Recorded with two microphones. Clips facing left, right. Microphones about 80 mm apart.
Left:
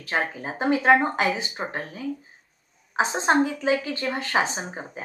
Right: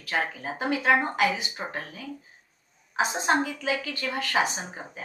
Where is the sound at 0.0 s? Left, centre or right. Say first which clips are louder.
Left 2 dB; left.